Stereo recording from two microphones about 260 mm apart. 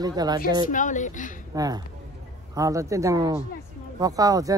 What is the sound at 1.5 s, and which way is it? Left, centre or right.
Speech, centre.